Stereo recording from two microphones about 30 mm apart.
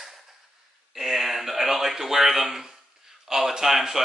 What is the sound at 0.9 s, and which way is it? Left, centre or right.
A man's voice, centre.